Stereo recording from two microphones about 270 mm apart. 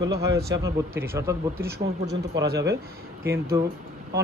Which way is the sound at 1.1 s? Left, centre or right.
Centre.